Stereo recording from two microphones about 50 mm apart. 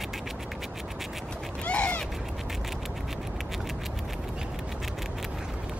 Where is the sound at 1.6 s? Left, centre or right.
Left.